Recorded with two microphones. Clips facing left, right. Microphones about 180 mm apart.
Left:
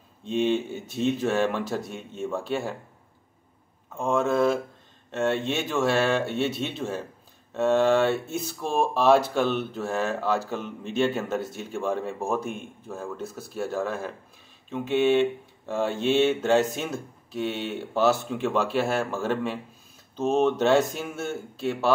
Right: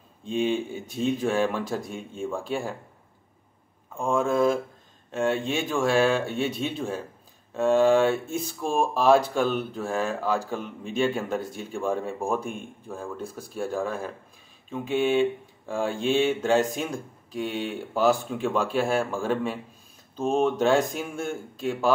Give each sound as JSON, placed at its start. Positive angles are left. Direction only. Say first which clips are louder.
{"t": 0.4, "sound": "speech", "louder": "left 1 dB", "side_deg": -10}
{"t": 3.9, "sound": "speech", "louder": "even", "side_deg": 5}
{"t": 4.2, "sound": "speech", "louder": "even", "side_deg": -10}
{"t": 8.5, "sound": "speech", "louder": "even", "side_deg": 0}
{"t": 8.8, "sound": "speech", "louder": "even", "side_deg": -10}
{"t": 20.2, "sound": "speech", "louder": "left 1 dB", "side_deg": 0}
{"t": 20.7, "sound": "speech", "louder": "left 1 dB", "side_deg": -15}